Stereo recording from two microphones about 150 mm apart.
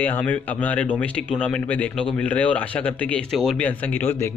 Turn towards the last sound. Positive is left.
turn(degrees=15)  # may be behind; listen again after turning